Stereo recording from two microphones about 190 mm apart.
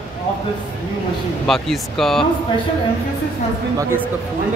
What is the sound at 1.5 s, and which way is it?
Speech, centre (ahead or behind).